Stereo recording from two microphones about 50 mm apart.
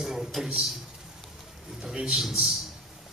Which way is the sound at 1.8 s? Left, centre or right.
Centre.